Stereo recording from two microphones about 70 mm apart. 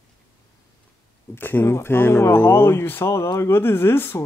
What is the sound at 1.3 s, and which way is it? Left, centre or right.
Speech, left.